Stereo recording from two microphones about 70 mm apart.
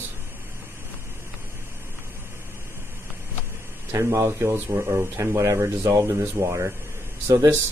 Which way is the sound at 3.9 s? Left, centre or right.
Right.